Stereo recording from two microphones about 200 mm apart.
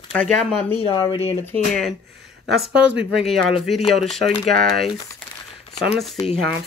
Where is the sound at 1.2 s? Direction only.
10° left (ahead or behind).